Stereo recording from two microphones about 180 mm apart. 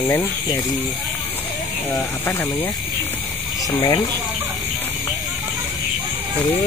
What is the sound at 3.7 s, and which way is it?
Speech, 25° left (ahead or behind).